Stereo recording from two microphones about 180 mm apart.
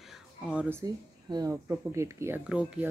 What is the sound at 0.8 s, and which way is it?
Speech, 20° right (ahead or behind).